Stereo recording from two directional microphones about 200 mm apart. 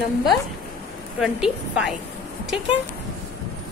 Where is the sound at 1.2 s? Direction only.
5° right (ahead or behind).